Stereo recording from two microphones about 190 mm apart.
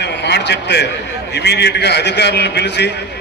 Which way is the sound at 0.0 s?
65° left (ahead or behind).